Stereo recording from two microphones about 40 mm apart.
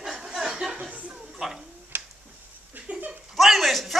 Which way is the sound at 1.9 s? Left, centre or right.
Right.